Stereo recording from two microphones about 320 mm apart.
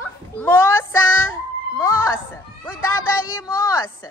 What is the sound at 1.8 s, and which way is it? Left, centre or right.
Music, centre.